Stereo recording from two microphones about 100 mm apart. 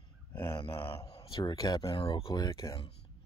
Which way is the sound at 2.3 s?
35° left (ahead or behind).